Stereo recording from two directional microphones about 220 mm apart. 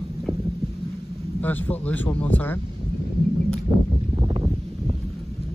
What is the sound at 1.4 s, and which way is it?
Speech, 10° left (ahead or behind).